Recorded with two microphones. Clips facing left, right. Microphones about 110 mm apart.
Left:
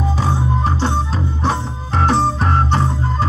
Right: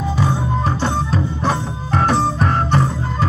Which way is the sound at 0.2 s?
30° left (ahead or behind).